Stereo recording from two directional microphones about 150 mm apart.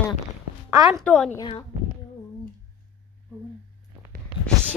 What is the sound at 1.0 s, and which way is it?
Speech, 5° left (ahead or behind).